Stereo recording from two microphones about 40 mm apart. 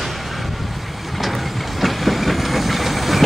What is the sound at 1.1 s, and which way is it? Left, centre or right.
Train, centre.